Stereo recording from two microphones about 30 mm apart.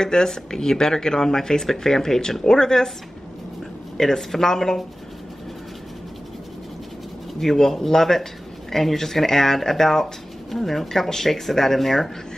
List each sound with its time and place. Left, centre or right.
0.0 s speech: left
4.0 s speech: centre
7.3 s speech: centre